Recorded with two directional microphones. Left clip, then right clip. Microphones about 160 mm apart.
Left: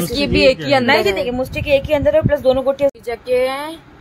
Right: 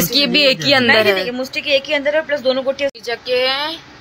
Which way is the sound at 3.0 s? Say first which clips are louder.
Even; 30° left (ahead or behind).